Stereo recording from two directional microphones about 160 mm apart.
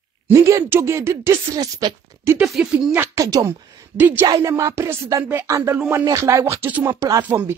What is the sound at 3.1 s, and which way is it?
Speech, 20° right (ahead or behind).